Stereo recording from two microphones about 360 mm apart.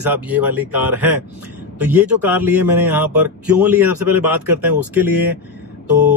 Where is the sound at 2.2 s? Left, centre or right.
Centre.